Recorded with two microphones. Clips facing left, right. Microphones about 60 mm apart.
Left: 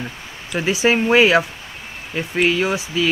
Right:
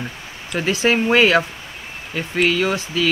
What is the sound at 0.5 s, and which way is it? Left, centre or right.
Speech, centre.